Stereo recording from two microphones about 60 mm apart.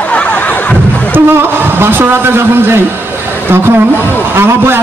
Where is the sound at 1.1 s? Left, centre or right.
Right.